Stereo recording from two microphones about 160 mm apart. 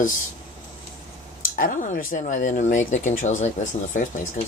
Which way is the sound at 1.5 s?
55° left (ahead or behind).